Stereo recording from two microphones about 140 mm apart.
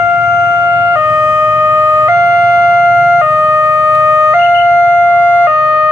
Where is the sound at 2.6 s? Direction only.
5° left (ahead or behind).